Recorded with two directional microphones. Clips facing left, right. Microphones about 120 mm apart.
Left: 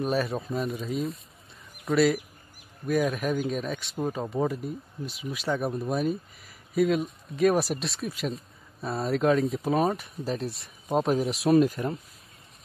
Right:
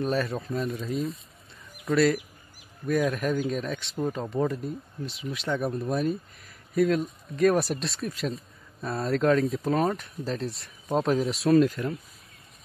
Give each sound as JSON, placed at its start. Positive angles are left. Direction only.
{"t": 0.0, "sound": "speech", "side_deg": 5}
{"t": 11.7, "sound": "speech", "side_deg": 25}